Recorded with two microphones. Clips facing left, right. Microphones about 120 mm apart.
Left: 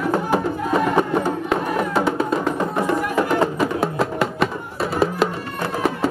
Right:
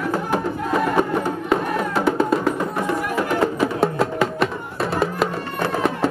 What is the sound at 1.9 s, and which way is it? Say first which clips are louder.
Music: right 3 dB; centre (ahead or behind).